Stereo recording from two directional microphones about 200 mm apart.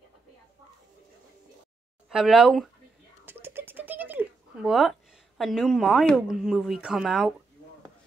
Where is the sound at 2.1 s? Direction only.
Centre (ahead or behind).